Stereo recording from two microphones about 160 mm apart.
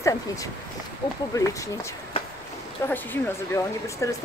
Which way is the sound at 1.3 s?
20° left (ahead or behind).